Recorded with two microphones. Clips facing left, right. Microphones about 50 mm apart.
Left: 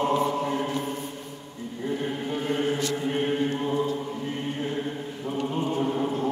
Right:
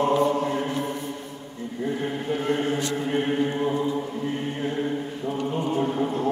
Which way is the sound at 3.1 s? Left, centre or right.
Centre.